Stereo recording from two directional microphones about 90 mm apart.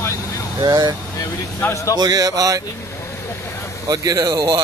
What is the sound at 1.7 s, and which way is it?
Speech, 35° left (ahead or behind).